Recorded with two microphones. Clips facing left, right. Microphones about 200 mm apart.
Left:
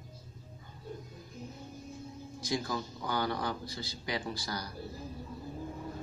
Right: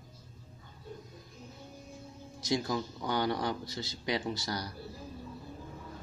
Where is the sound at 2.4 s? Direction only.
25° right (ahead or behind).